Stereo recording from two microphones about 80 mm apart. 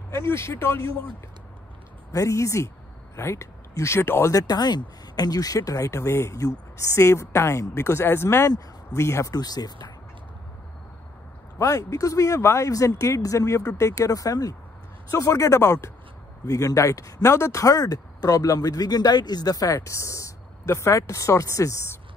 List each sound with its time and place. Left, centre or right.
0.1 s a woman's voice: left
2.1 s a woman's voice: left
4.3 s a woman's voice: left
9.3 s speech: left
11.5 s a woman's voice: left